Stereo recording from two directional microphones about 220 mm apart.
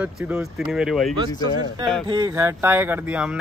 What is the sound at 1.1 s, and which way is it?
Speech, 20° right (ahead or behind).